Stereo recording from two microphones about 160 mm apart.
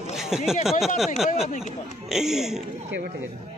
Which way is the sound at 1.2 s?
40° left (ahead or behind).